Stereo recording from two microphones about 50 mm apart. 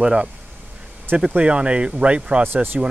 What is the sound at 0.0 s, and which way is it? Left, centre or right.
Speech, centre.